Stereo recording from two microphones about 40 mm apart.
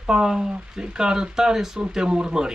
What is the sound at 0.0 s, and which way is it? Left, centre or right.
Speech, centre.